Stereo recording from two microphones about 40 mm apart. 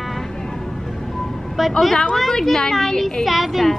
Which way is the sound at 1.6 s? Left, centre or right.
Centre.